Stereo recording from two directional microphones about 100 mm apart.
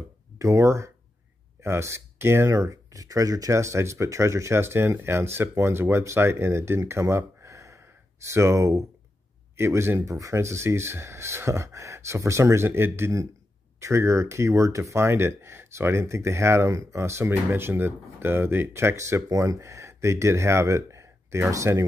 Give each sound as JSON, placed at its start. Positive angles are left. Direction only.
{"t": 0.4, "sound": "speech", "side_deg": -30}